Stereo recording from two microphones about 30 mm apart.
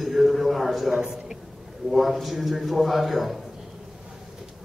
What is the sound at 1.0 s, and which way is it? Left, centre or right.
Speech, centre.